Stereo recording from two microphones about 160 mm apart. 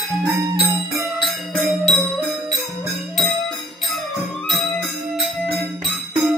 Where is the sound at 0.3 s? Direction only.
35° right (ahead or behind).